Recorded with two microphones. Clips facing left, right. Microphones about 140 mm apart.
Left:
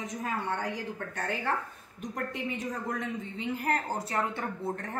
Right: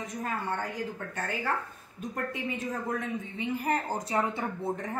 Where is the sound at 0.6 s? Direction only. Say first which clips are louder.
Even; 5° right (ahead or behind).